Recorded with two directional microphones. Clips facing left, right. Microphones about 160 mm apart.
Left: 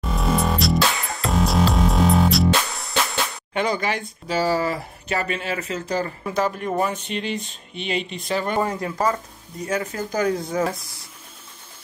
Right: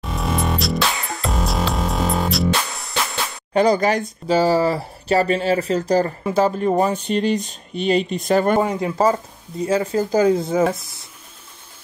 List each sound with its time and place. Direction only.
0.0 s music: centre (ahead or behind)
3.5 s speech: 40° right (ahead or behind)
4.4 s speech: 30° right (ahead or behind); by 8.5 s 45° right (ahead or behind)
8.5 s speech: 20° right (ahead or behind)